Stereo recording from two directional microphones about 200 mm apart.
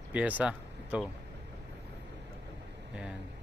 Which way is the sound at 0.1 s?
5° right (ahead or behind).